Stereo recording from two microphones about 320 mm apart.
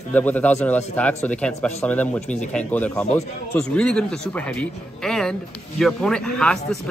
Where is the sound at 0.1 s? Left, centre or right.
Centre.